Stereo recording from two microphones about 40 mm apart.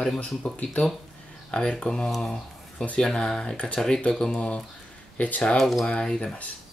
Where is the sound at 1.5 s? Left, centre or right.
Left.